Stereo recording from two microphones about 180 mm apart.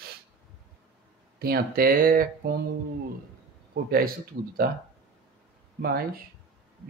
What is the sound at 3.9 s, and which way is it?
Speech, 55° right (ahead or behind).